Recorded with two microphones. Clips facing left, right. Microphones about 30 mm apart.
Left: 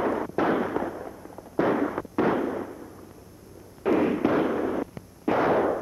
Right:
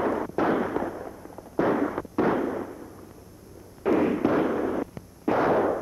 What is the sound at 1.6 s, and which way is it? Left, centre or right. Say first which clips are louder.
Fireworks: even; centre.